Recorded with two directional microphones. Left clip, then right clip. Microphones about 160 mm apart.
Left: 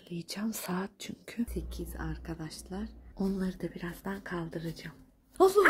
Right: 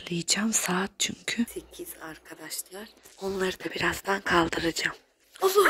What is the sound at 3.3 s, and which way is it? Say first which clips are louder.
Speech: right 9 dB; 40° right (ahead or behind).